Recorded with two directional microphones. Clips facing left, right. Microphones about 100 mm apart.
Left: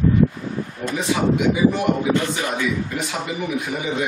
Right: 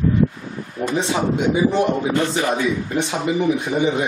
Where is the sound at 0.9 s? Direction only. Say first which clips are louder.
Left 1 dB; 30° right (ahead or behind).